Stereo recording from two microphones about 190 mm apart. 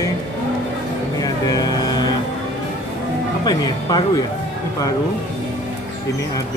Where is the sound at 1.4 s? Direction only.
20° left (ahead or behind).